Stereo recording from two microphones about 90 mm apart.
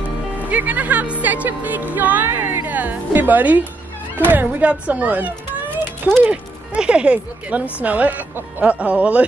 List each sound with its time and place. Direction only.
0.5 s speech: 15° right (ahead or behind)